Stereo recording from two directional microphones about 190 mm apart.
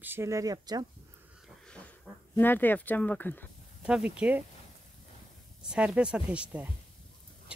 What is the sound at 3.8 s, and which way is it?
Speech, 5° right (ahead or behind).